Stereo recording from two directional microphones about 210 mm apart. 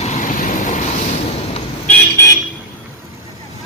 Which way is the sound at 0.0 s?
35° left (ahead or behind).